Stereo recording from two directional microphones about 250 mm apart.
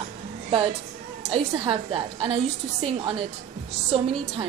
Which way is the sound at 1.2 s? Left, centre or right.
Right.